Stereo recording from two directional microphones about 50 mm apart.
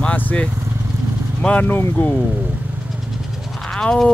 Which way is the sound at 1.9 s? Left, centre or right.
Left.